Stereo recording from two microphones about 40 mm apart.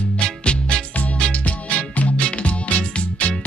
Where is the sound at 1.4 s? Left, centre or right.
Left.